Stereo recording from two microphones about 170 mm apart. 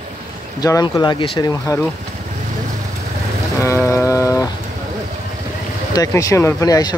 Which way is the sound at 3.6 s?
15° left (ahead or behind).